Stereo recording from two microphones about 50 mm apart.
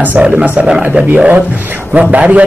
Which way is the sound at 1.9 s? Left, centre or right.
Right.